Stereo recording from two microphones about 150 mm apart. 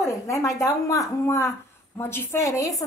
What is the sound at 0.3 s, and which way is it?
A woman's voice, 20° left (ahead or behind).